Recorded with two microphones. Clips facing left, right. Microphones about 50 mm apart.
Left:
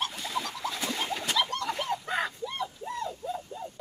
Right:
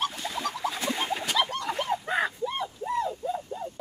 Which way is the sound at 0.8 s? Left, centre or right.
Centre.